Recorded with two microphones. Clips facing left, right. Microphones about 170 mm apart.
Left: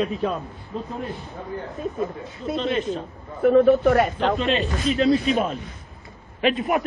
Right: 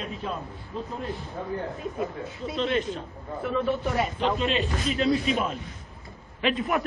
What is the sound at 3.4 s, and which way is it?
Speech, 55° left (ahead or behind).